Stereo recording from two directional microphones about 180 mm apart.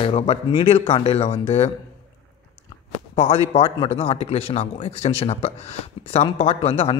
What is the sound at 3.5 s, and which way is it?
Speech, 30° left (ahead or behind).